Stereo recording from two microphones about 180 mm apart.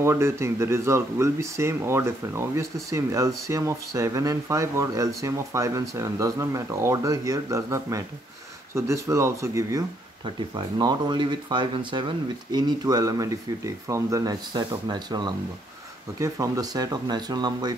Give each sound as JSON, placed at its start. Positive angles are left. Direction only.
{"t": 0.0, "sound": "speech", "side_deg": -15}